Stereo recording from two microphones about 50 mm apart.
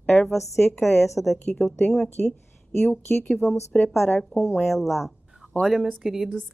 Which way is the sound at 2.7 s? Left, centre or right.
Left.